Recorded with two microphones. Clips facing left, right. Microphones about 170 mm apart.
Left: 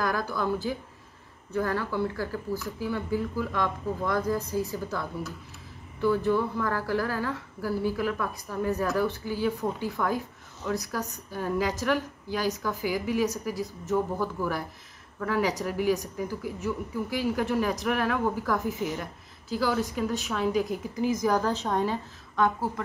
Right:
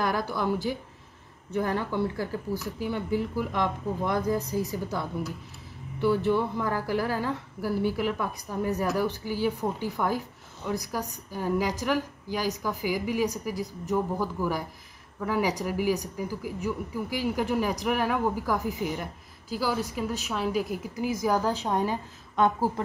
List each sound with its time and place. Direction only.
0.0 s speech: 25° right (ahead or behind)
1.6 s a woman's voice: 20° right (ahead or behind)